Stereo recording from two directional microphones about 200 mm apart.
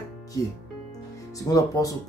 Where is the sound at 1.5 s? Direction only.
15° left (ahead or behind).